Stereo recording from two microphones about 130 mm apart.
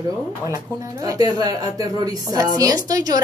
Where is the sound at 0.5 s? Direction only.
30° right (ahead or behind).